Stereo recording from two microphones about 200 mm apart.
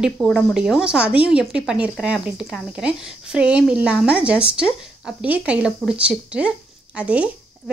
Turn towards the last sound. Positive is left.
turn(degrees=-5)  # may be behind; listen again after turning